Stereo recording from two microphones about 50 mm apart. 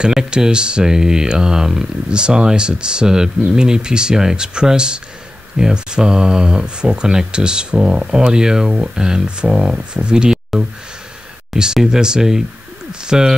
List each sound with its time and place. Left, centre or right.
0.0 s speech: centre